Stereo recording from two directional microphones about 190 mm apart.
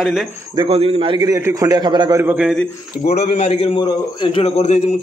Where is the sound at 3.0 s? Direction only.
35° left (ahead or behind).